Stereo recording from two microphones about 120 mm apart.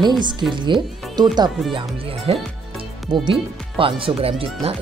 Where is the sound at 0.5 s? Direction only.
40° right (ahead or behind).